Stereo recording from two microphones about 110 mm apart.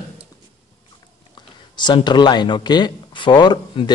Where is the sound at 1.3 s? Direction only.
45° left (ahead or behind).